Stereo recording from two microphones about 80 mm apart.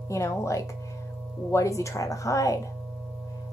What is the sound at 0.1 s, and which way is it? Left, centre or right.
A woman's voice, left.